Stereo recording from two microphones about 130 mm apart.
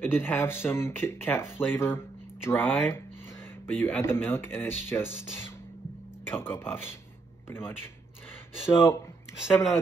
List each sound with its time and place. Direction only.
0.0 s speech: 15° left (ahead or behind)